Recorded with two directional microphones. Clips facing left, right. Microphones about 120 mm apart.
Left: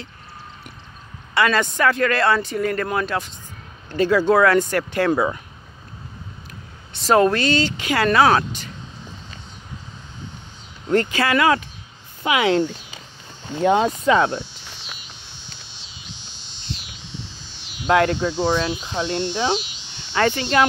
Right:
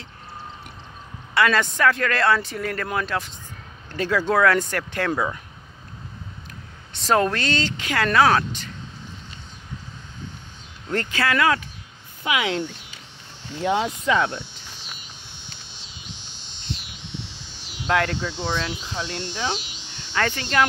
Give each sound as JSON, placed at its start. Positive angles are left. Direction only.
{"t": 1.3, "sound": "speech", "side_deg": 0}
{"t": 6.9, "sound": "speech", "side_deg": 5}
{"t": 10.9, "sound": "speech", "side_deg": 15}
{"t": 12.2, "sound": "speech", "side_deg": 35}
{"t": 14.4, "sound": "a sound", "side_deg": -45}
{"t": 17.8, "sound": "speech", "side_deg": 25}
{"t": 19.6, "sound": "a sound", "side_deg": -45}
{"t": 20.2, "sound": "speech", "side_deg": 20}